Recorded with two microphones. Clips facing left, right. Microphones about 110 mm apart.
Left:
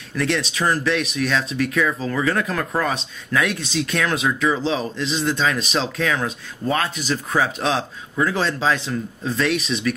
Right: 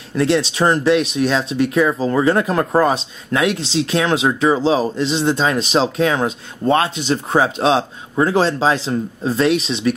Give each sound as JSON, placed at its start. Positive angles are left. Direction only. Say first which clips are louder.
{"t": 0.1, "sound": "speech", "louder": "right 6 dB", "side_deg": -30}